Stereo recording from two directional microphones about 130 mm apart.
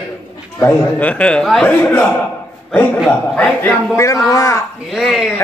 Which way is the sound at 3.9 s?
25° left (ahead or behind).